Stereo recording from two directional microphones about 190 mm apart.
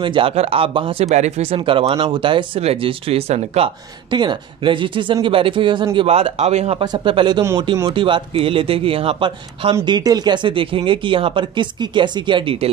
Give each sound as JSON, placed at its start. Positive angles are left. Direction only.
{"t": 0.0, "sound": "speech", "side_deg": -25}